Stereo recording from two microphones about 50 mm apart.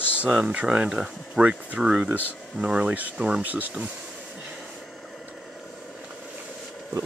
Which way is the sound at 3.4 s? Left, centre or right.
Right.